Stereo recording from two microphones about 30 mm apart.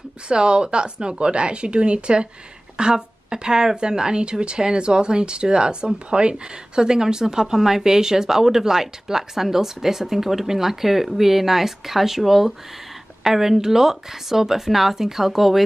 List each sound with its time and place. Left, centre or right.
0.3 s speech: right; by 15.6 s centre